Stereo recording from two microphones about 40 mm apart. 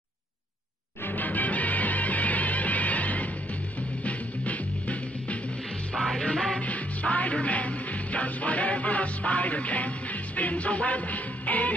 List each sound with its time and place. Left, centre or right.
1.0 s music: left
5.9 s music: centre
6.6 s music: left